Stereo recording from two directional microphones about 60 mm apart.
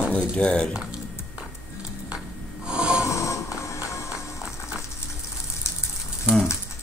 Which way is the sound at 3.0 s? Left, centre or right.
Left.